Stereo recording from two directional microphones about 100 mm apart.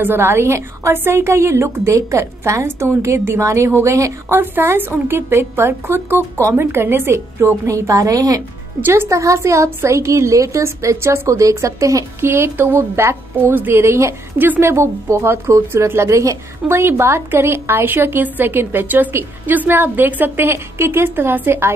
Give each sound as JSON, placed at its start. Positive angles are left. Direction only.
{"t": 0.0, "sound": "a woman's voice", "side_deg": -25}
{"t": 8.8, "sound": "a woman's voice", "side_deg": -25}